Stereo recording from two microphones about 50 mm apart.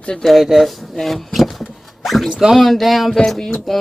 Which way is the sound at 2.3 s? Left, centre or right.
Centre.